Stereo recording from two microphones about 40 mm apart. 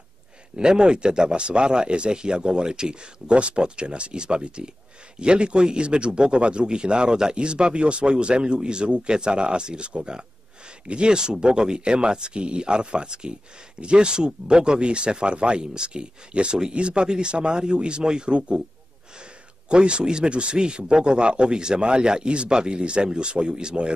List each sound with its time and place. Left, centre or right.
0.6 s a man's voice: right
19.7 s a man's voice: right